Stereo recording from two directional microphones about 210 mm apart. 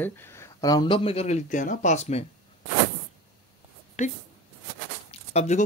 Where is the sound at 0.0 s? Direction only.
10° left (ahead or behind); by 2.2 s 30° left (ahead or behind).